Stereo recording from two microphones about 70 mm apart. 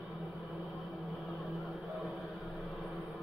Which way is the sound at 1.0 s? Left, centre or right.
Centre.